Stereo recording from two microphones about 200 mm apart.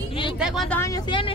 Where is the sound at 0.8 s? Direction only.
20° left (ahead or behind).